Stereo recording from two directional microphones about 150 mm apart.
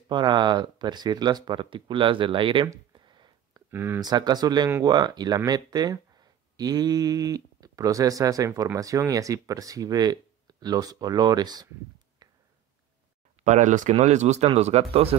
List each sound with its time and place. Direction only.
0.1 s speech: 30° right (ahead or behind)
2.7 s a sound: 30° right (ahead or behind)
3.7 s speech: 15° right (ahead or behind)
4.1 s speech: 25° right (ahead or behind)
13.4 s speech: 55° right (ahead or behind)